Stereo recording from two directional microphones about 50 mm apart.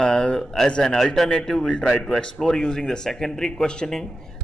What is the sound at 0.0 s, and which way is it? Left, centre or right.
Speech, centre.